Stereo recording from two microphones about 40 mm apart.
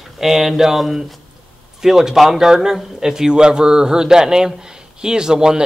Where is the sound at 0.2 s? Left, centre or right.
Centre.